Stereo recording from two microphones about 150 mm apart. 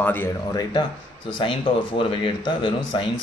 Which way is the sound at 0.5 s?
25° left (ahead or behind).